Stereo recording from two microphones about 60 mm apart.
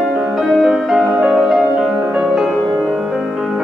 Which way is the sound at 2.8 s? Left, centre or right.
Centre.